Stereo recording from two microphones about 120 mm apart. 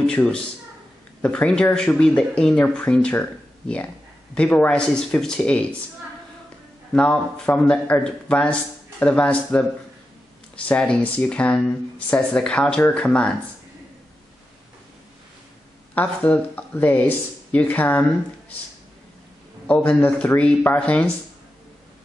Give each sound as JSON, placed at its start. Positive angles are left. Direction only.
{"t": 0.0, "sound": "a man's voice", "side_deg": 10}
{"t": 6.9, "sound": "speech", "side_deg": 10}
{"t": 15.9, "sound": "speech", "side_deg": 15}
{"t": 19.7, "sound": "speech", "side_deg": 15}